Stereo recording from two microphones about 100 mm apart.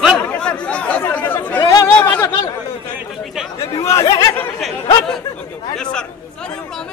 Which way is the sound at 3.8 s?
35° left (ahead or behind).